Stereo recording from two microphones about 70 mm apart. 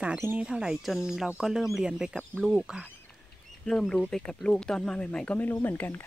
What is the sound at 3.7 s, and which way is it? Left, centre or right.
Speech, centre.